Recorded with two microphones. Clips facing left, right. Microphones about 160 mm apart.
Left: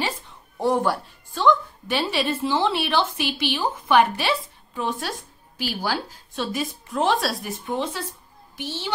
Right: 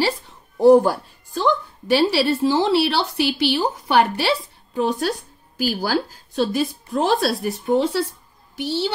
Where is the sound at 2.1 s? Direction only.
35° right (ahead or behind).